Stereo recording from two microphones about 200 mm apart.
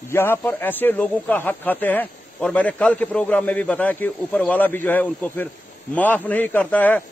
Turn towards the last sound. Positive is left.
turn(degrees=5)  # may be behind; listen again after turning